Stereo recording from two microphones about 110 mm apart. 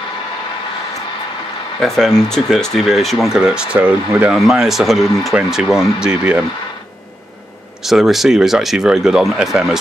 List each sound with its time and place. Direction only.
1.8 s speech: 5° left (ahead or behind)
7.8 s speech: centre (ahead or behind)